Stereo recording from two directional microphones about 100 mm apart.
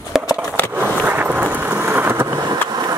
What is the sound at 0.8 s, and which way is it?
Vehicle, 15° right (ahead or behind).